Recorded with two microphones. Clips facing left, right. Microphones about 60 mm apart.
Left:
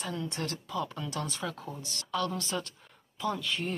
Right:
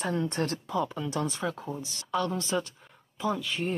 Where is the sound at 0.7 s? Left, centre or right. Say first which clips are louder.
Right 4 dB; centre.